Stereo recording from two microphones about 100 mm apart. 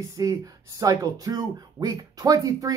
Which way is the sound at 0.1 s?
35° right (ahead or behind).